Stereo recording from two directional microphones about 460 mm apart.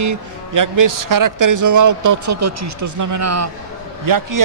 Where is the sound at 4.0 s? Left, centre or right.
Right.